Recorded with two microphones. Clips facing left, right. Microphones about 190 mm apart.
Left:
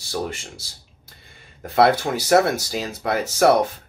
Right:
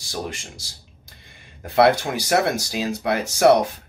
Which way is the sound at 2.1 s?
15° right (ahead or behind).